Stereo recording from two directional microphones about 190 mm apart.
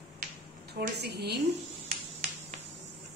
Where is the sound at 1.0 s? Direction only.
60° right (ahead or behind).